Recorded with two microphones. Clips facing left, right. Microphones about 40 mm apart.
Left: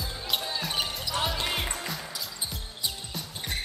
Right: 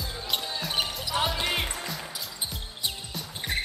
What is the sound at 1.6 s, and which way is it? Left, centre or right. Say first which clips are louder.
Music: even; centre.